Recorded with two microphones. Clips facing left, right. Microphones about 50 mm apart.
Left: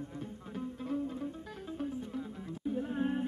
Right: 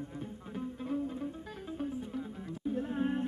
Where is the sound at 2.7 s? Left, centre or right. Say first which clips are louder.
Right 1 dB; centre.